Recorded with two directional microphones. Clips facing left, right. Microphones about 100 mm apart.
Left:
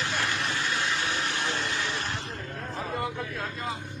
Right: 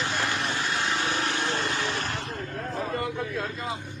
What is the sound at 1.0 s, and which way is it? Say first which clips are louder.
Vehicle: right 2 dB; 50° right (ahead or behind).